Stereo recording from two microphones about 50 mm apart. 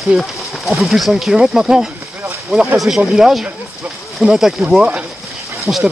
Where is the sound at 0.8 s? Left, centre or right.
Centre.